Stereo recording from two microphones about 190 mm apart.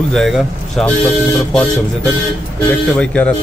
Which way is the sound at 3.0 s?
5° left (ahead or behind).